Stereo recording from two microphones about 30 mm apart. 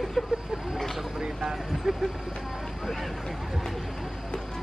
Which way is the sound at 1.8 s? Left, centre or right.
Centre.